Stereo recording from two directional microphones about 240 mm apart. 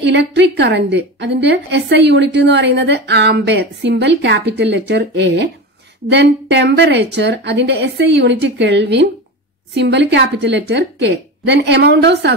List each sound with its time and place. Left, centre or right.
0.0 s a woman's voice: right